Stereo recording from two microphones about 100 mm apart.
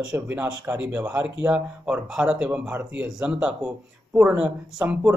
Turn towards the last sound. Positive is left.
turn(degrees=-10)  # may be behind; listen again after turning